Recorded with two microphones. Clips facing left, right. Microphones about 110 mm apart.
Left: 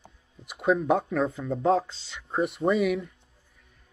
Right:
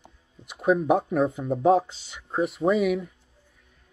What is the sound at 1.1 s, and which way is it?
Speech, 20° right (ahead or behind).